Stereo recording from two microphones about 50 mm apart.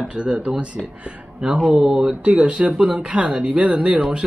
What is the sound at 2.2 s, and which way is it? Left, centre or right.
A man's voice, right.